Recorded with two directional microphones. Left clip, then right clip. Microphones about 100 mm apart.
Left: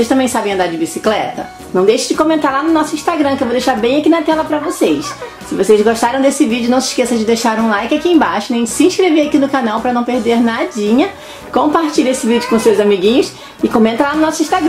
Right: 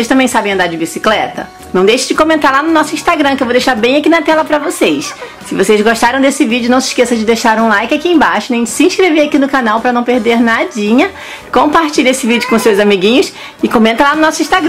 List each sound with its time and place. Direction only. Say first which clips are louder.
0.1 s speech: right 3 dB; 50° right (ahead or behind)
1.7 s speech: right 2 dB; 90° right
2.4 s speech: right 4 dB; 55° right (ahead or behind)